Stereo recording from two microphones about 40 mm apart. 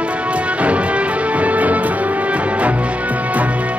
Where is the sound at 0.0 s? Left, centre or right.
Right.